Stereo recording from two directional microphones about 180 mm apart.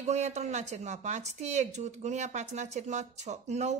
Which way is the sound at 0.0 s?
40° right (ahead or behind).